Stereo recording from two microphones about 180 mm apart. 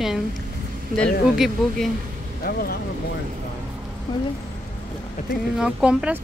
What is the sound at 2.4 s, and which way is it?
Speech, 55° left (ahead or behind).